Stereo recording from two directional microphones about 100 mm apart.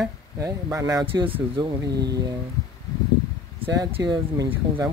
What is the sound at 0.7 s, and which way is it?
Speech, 35° right (ahead or behind).